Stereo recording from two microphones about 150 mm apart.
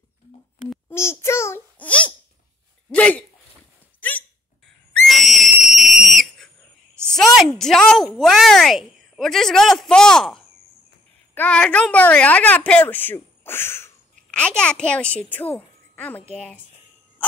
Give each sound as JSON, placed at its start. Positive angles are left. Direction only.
{"t": 0.8, "sound": "a child's voice", "side_deg": 15}
{"t": 5.0, "sound": "whistle", "side_deg": 0}
{"t": 7.1, "sound": "a woman's voice", "side_deg": 0}